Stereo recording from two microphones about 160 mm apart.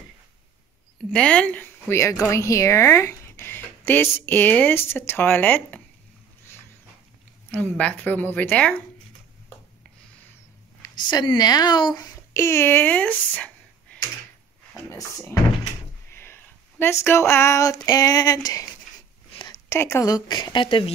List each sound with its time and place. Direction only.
1.1 s speech: 5° left (ahead or behind)
7.5 s speech: 10° left (ahead or behind)
11.1 s speech: 25° left (ahead or behind); by 13.9 s 10° left (ahead or behind)
14.9 s speech: 20° left (ahead or behind)